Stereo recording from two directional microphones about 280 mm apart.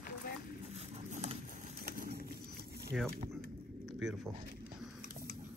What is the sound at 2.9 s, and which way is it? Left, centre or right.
Speech, centre.